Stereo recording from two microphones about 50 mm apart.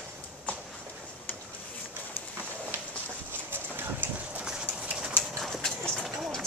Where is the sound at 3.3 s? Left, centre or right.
Right.